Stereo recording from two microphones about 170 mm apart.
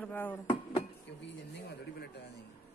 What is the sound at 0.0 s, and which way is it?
Speech, 10° left (ahead or behind).